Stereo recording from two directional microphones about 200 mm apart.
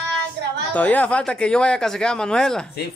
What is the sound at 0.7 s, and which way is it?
Speech, 10° left (ahead or behind).